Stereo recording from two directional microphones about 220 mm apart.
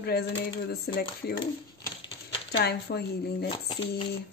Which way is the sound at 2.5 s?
45° left (ahead or behind).